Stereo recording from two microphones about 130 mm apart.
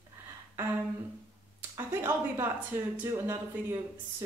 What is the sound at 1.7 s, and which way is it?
Speech, 20° right (ahead or behind).